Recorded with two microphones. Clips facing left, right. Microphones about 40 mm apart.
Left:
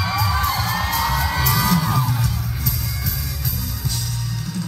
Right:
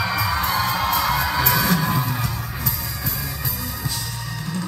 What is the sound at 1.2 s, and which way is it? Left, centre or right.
Music, right.